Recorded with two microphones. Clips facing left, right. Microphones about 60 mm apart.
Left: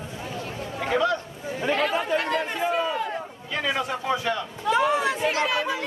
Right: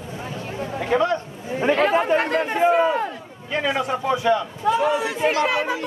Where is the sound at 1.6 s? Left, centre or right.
Right.